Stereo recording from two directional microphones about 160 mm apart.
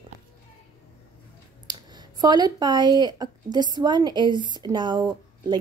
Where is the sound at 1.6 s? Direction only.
25° right (ahead or behind).